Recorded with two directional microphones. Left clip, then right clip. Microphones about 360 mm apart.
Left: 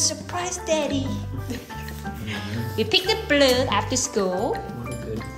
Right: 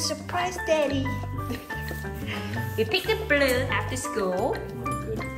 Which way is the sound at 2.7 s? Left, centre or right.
Centre.